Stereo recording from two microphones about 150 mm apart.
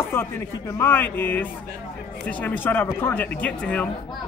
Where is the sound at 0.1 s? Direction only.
15° left (ahead or behind).